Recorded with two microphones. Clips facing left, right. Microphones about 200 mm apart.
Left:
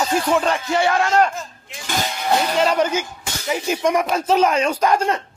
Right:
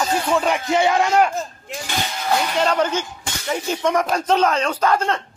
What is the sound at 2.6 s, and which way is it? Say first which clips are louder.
A man's voice: left 1 dB; 10° left (ahead or behind).